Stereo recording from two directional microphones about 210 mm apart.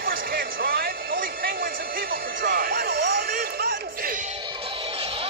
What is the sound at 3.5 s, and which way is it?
Music, 45° right (ahead or behind).